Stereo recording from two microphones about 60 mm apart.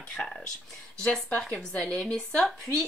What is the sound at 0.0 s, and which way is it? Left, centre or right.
Speech, centre.